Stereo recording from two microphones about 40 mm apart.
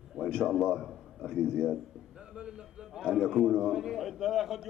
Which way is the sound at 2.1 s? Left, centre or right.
Right.